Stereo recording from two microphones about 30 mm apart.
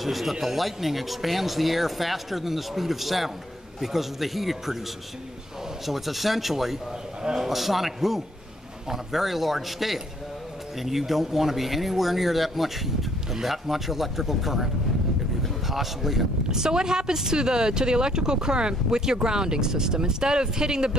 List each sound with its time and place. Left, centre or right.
0.0 s speech: centre
5.9 s a man's voice: centre
16.4 s speech: right